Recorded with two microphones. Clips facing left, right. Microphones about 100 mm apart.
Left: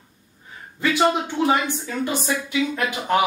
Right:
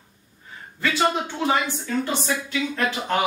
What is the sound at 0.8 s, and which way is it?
A woman's voice, 20° left (ahead or behind).